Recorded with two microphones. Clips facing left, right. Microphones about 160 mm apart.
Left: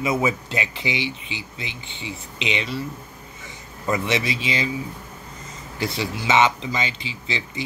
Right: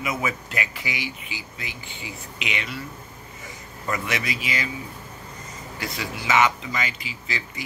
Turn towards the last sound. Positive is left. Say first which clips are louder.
# left 4 dB
turn(degrees=25)  # may be behind; listen again after turning